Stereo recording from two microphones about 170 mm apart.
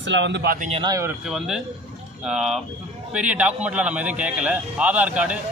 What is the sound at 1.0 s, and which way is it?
A man's voice, 5° right (ahead or behind).